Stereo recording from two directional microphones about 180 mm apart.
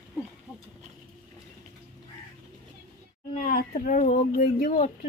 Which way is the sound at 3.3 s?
50° left (ahead or behind).